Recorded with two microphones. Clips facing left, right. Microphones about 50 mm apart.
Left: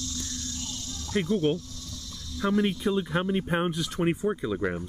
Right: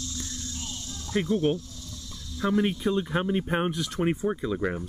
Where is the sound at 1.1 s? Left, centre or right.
Centre.